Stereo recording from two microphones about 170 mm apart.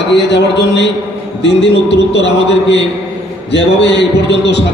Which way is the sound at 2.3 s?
25° right (ahead or behind).